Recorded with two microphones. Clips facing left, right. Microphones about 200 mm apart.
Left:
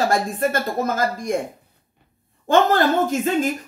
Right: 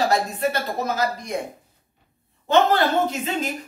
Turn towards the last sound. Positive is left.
turn(degrees=50)  # may be behind; listen again after turning